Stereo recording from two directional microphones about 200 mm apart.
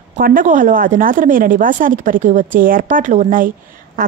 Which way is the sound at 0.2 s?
45° right (ahead or behind).